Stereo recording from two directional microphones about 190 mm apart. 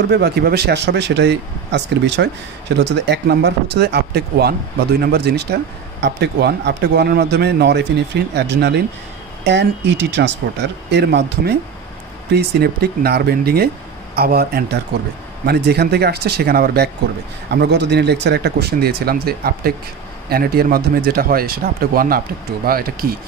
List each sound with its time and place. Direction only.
0.1 s speech: 55° right (ahead or behind)